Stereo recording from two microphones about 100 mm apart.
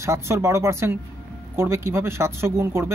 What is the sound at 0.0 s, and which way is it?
Speech, 30° right (ahead or behind).